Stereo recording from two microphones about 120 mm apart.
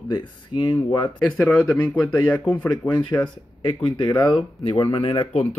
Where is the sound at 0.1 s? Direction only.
40° left (ahead or behind).